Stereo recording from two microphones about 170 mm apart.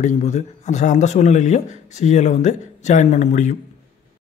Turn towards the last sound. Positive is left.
turn(degrees=45)  # may be behind; listen again after turning